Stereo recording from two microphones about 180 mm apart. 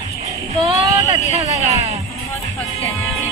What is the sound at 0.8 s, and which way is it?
Speech, 20° right (ahead or behind).